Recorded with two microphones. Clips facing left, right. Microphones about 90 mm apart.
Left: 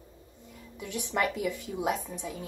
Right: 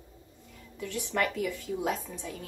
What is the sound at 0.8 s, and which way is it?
A woman's voice, 15° left (ahead or behind).